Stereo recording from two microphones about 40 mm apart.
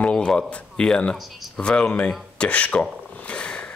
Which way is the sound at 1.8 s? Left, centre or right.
Left.